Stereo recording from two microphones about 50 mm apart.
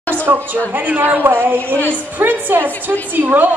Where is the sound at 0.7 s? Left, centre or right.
Right.